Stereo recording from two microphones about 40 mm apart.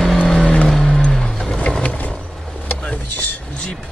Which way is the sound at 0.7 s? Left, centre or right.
Centre.